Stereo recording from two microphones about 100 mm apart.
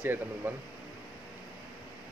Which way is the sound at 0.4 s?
20° right (ahead or behind).